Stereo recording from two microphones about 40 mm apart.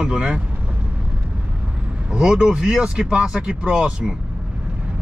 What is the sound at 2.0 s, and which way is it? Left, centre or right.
Speech, centre.